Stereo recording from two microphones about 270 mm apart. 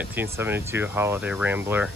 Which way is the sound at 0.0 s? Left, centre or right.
Centre.